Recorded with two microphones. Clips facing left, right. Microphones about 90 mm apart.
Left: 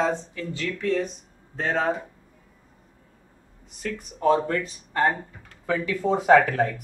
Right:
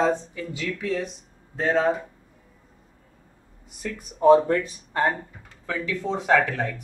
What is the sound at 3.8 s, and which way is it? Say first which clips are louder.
Speech: right 5 dB; 15° right (ahead or behind).